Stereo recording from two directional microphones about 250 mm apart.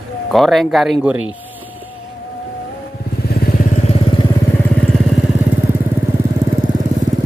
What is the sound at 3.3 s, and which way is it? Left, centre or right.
Vehicle, left.